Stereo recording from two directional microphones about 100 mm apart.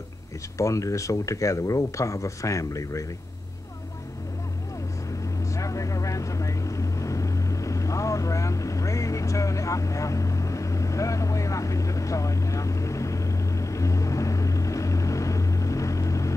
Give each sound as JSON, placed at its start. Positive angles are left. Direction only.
{"t": 0.6, "sound": "speech", "side_deg": 30}
{"t": 5.5, "sound": "vehicle", "side_deg": 35}